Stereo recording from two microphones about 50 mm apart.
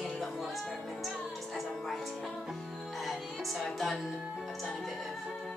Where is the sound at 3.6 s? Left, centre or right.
Centre.